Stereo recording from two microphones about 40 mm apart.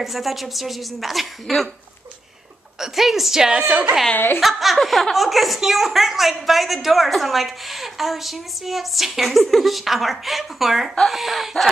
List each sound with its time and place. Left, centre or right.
0.0 s a woman's voice: centre
2.8 s a woman's voice: centre
4.4 s a woman's voice: centre